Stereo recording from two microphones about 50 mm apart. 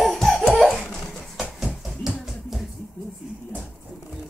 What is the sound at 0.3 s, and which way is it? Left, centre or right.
Laughter, centre.